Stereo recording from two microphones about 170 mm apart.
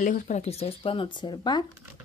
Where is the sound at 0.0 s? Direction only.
45° left (ahead or behind); by 1.7 s 25° left (ahead or behind).